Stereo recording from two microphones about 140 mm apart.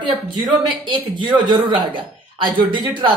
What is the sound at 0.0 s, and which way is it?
A man's voice, 35° right (ahead or behind).